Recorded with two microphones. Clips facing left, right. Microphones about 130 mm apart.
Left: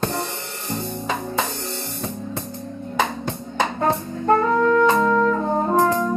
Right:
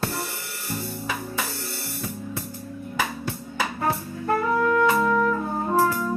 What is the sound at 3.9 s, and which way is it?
Brass instrument, 45° left (ahead or behind).